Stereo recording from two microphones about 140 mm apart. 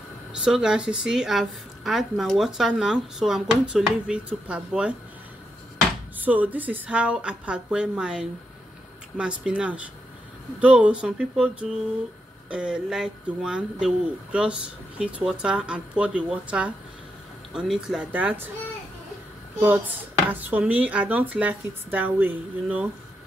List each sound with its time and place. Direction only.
0.3 s a woman's voice: 5° right (ahead or behind)
6.1 s a woman's voice: 10° right (ahead or behind)
20.2 s speech: 10° right (ahead or behind)